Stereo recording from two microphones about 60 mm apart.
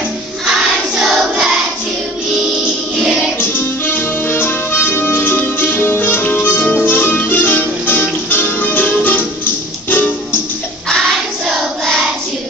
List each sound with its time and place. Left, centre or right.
0.5 s choir: centre
1.3 s music: centre
3.0 s music: centre
3.3 s music: left